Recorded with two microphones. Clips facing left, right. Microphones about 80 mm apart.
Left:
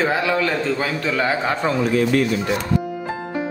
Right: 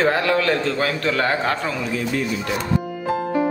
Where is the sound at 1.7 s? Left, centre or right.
Left.